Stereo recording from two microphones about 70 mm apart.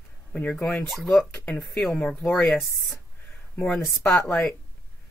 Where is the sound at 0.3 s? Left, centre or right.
Left.